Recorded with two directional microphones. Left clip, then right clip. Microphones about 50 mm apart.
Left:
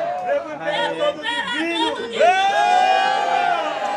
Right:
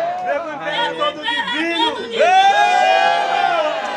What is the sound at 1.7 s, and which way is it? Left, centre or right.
Music, centre.